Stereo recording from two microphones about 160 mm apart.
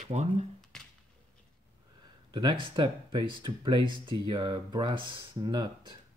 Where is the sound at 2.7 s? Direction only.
30° right (ahead or behind).